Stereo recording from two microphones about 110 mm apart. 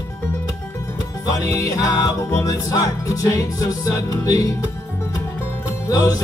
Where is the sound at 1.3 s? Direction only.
30° left (ahead or behind).